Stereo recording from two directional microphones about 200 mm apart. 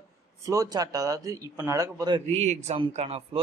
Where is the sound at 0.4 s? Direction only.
15° right (ahead or behind).